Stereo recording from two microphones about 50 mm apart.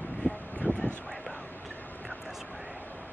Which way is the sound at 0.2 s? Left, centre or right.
Left.